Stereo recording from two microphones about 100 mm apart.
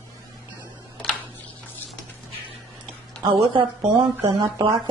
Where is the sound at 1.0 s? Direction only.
10° left (ahead or behind).